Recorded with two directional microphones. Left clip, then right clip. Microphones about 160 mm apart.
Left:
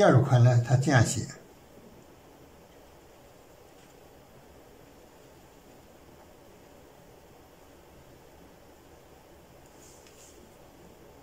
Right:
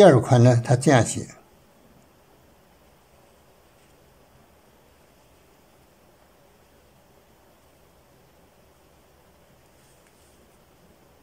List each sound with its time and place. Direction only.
0.0 s speech: 35° right (ahead or behind)
1.0 s speech: 20° right (ahead or behind)